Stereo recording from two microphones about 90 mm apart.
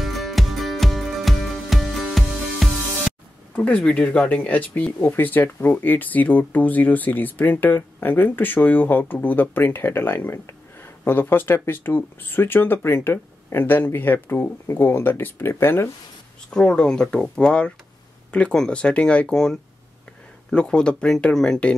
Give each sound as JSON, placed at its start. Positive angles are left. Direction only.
{"t": 0.0, "sound": "music", "side_deg": 0}
{"t": 3.5, "sound": "speech", "side_deg": 15}
{"t": 16.4, "sound": "speech", "side_deg": 10}